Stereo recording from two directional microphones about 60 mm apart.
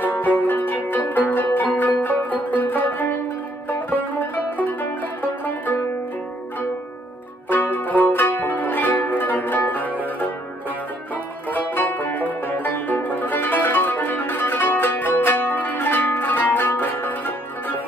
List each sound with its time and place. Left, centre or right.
0.0 s music: left
5.2 s music: left
7.4 s music: left
11.5 s music: left